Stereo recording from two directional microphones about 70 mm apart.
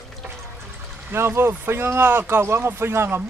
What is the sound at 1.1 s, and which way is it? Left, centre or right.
Speech, right.